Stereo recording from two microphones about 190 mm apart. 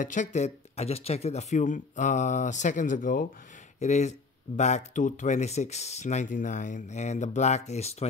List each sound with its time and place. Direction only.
0.0 s speech: 40° left (ahead or behind)